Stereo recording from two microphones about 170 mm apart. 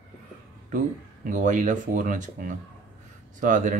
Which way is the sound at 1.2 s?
50° right (ahead or behind).